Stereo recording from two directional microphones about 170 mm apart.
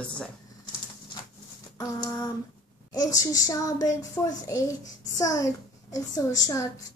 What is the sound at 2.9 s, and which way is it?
A child's voice, 20° left (ahead or behind).